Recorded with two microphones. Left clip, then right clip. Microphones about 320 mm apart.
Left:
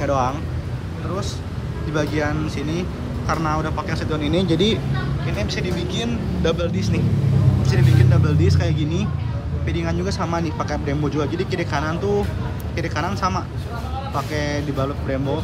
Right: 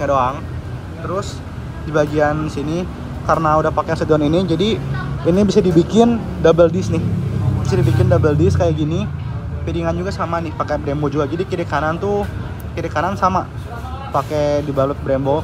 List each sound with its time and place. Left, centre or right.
0.0 s speech: centre
2.0 s speech: centre